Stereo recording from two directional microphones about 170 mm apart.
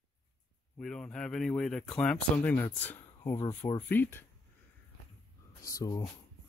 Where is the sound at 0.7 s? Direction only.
5° left (ahead or behind).